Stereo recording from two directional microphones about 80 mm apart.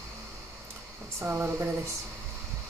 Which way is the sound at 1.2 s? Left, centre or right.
Right.